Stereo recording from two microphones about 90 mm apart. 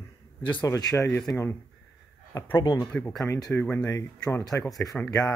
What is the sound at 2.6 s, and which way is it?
Speech, 35° left (ahead or behind).